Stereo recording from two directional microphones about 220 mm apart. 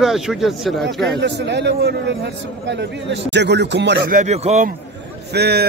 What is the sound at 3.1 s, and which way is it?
A man's voice, 50° right (ahead or behind).